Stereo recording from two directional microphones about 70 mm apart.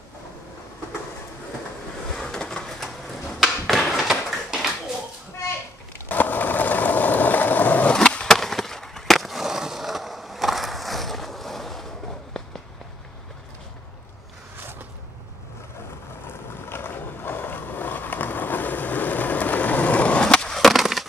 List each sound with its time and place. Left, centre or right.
2.1 s a sound: centre
6.0 s skateboard: left
7.9 s skateboard: centre
16.6 s skateboard: left; by 21.1 s centre